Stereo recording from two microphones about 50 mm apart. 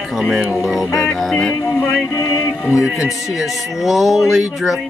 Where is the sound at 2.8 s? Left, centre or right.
Centre.